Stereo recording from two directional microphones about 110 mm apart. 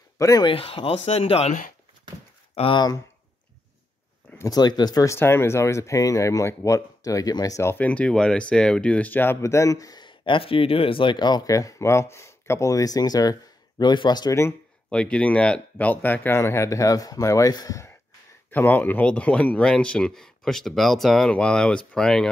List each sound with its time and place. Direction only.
0.2 s speech: 35° left (ahead or behind)
0.5 s speech: 55° left (ahead or behind)
2.5 s speech: 55° left (ahead or behind)
4.4 s speech: 35° left (ahead or behind)
5.1 s speech: 20° left (ahead or behind)
7.7 s speech: 10° left (ahead or behind); by 14.3 s 40° left (ahead or behind)
14.9 s speech: 10° left (ahead or behind); by 17.9 s 30° left (ahead or behind)
18.5 s speech: 15° left (ahead or behind)